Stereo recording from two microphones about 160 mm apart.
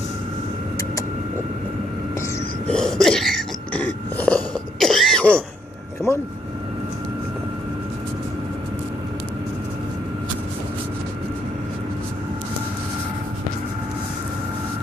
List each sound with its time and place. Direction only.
2.7 s throat clearing: 5° left (ahead or behind)
3.8 s cough: 10° left (ahead or behind)